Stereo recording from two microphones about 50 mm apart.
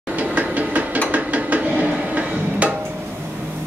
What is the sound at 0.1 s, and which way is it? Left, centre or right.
Mechanisms, right.